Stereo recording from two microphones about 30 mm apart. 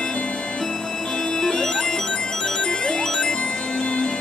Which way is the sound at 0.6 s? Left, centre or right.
Centre.